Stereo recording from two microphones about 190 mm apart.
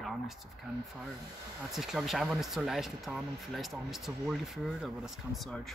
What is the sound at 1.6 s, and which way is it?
Speech, centre (ahead or behind).